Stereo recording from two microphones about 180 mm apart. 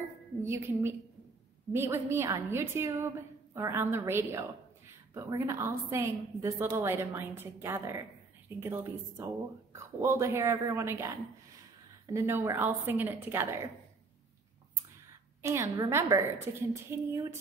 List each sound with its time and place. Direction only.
0.4 s a woman's voice: 15° right (ahead or behind)
12.1 s a woman's voice: 15° right (ahead or behind)
15.4 s a woman's voice: 15° right (ahead or behind)